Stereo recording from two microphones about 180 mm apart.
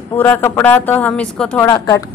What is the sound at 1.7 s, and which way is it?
Speech, 20° left (ahead or behind).